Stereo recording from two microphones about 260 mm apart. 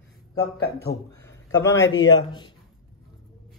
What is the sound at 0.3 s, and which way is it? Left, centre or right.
Speech, left.